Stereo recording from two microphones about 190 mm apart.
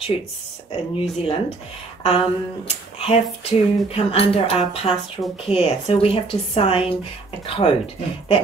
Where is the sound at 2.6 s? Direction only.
35° left (ahead or behind).